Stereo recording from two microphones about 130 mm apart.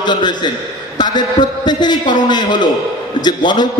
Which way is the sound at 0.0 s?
35° left (ahead or behind).